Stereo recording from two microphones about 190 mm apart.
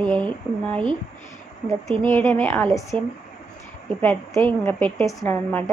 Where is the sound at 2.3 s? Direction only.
10° left (ahead or behind).